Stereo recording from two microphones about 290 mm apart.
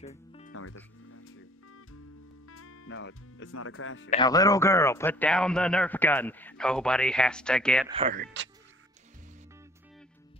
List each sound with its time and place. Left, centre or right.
0.0 s music: left
0.5 s music: left
2.4 s speech: left
4.1 s a man's voice: centre
7.9 s speech: right
8.2 s speech: right